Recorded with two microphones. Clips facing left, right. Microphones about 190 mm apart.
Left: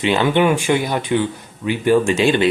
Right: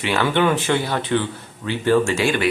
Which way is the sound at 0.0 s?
20° left (ahead or behind).